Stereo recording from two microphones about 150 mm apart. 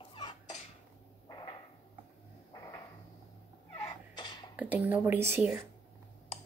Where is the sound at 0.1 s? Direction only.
30° left (ahead or behind).